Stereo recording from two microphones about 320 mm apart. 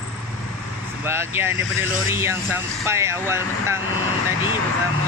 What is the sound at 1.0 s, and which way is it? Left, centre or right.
Speech, centre.